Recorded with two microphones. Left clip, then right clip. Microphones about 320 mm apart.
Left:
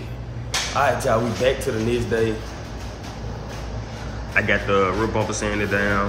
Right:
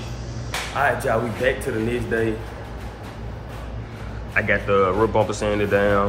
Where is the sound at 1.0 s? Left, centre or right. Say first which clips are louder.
Left 1 dB; centre.